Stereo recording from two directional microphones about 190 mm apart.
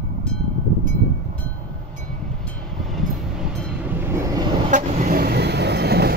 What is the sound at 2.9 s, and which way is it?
Train, centre (ahead or behind).